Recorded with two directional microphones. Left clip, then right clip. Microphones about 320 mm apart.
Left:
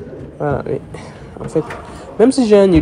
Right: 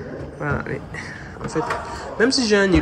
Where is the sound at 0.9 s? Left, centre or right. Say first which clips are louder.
Left 1 dB; left.